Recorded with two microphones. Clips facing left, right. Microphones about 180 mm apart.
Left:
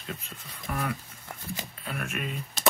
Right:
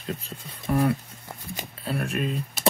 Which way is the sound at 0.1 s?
35° right (ahead or behind).